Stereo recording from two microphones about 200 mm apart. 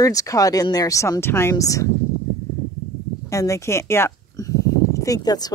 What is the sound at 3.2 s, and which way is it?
Speech, 15° left (ahead or behind).